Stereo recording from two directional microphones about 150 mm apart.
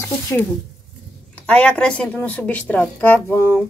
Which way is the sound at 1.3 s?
10° left (ahead or behind).